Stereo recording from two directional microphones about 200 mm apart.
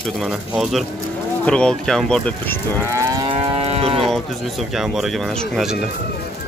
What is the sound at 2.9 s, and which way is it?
Moo, 15° right (ahead or behind).